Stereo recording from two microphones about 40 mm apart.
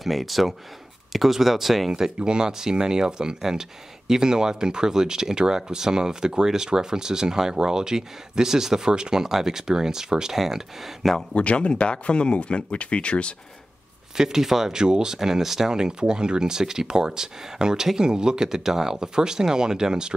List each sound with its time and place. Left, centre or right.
0.0 s speech: centre
1.9 s speech: centre
11.3 s speech: left
14.1 s speech: centre